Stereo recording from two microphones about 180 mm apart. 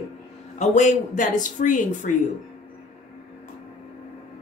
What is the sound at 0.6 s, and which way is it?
A woman's voice, 40° left (ahead or behind).